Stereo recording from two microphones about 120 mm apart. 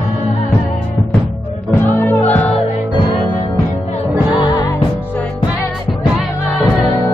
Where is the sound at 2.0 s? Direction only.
15° left (ahead or behind).